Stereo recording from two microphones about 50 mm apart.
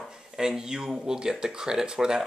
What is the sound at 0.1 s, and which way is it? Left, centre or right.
Speech, centre.